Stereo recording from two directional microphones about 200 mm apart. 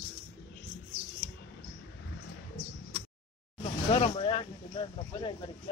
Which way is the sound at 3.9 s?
25° left (ahead or behind).